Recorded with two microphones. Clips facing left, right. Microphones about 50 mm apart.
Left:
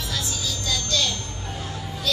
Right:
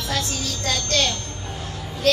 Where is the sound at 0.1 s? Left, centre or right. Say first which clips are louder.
Right 5 dB; right.